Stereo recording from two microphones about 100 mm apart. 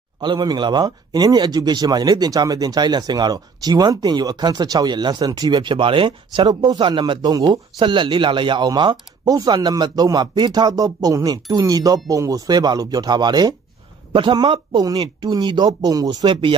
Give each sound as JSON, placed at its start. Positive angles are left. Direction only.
{"t": 0.2, "sound": "speech", "side_deg": -45}
{"t": 16.3, "sound": "speech", "side_deg": -55}